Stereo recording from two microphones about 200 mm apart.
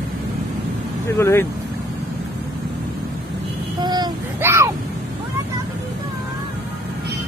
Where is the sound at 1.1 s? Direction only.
10° left (ahead or behind).